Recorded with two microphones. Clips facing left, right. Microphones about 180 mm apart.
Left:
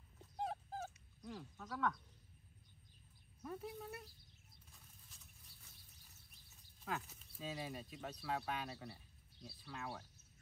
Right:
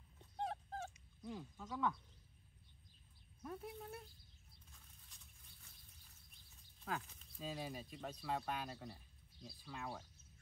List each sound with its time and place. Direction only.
0.2 s honk: 5° left (ahead or behind)
1.7 s speech: 5° right (ahead or behind)
3.4 s speech: centre (ahead or behind)
6.8 s speech: centre (ahead or behind)